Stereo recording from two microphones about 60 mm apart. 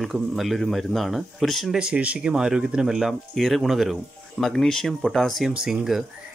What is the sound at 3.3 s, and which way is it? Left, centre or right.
Speech, centre.